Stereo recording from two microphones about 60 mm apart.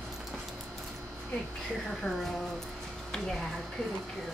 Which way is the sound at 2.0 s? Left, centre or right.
Centre.